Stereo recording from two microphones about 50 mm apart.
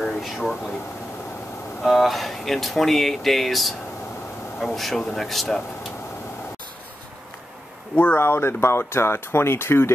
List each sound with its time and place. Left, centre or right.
0.2 s speech: centre
1.8 s speech: centre
7.9 s speech: left